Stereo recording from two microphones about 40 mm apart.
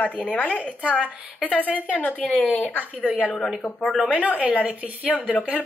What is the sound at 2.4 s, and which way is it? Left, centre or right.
Speech, left.